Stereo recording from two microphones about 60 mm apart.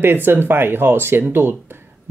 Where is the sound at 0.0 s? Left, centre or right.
Right.